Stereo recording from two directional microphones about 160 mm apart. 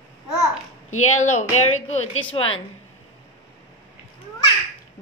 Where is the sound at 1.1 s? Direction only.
45° left (ahead or behind).